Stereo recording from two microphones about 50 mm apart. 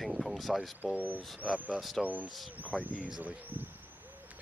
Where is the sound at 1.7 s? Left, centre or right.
Centre.